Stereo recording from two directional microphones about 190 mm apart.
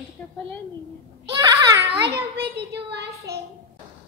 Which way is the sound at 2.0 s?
60° right (ahead or behind).